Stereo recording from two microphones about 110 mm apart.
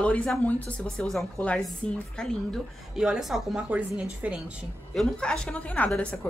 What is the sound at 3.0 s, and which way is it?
Speech, 5° right (ahead or behind).